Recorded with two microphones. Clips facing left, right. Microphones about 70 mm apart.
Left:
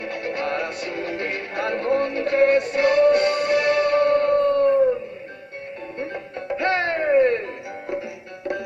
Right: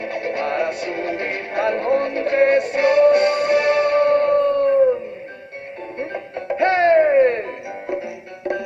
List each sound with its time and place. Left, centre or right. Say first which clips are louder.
0.0 s music: right 3 dB; right
5.9 s music: right 3 dB; right